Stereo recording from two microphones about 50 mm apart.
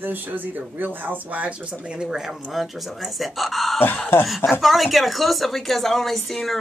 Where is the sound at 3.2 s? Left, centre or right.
Centre.